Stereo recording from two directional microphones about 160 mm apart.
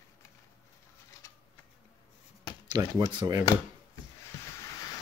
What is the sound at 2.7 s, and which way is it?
Speech, 25° right (ahead or behind).